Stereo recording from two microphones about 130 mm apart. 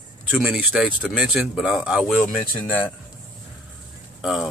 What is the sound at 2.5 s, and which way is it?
Speech, 15° left (ahead or behind).